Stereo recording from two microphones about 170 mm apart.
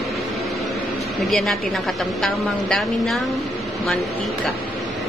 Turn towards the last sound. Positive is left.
turn(degrees=0)  # may be behind; listen again after turning